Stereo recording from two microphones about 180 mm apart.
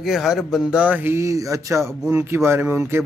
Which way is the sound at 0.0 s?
Centre (ahead or behind).